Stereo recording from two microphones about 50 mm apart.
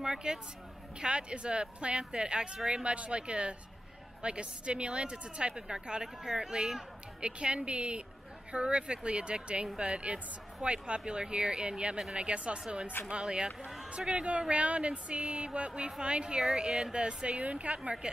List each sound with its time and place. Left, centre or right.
0.0 s a woman's voice: centre
13.6 s speech: centre
13.8 s a woman's voice: right